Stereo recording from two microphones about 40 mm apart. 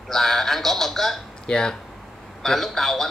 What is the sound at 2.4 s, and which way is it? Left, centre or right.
Speech, centre.